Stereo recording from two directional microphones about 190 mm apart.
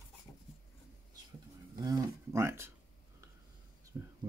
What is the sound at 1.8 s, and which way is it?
Speech, 15° right (ahead or behind).